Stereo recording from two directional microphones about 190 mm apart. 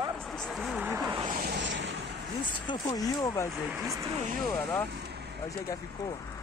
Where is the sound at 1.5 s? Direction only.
70° right (ahead or behind).